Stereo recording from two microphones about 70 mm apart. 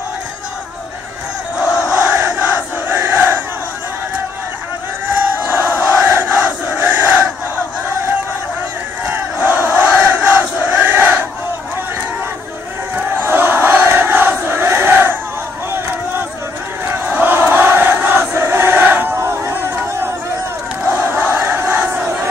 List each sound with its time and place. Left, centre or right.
1.9 s crowd: centre
5.5 s crowd: right
9.1 s battle cry: right
10.0 s crowd: right
12.9 s crowd: right
16.8 s crowd: right
19.1 s crowd: right
21.0 s crowd: right